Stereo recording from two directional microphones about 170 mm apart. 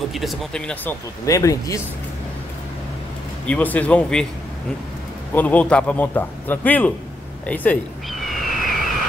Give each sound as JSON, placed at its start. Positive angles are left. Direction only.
{"t": 0.1, "sound": "speech", "side_deg": 0}
{"t": 1.2, "sound": "speech", "side_deg": 20}
{"t": 3.4, "sound": "a man's voice", "side_deg": 10}
{"t": 5.3, "sound": "a man's voice", "side_deg": 10}
{"t": 7.4, "sound": "frog", "side_deg": 10}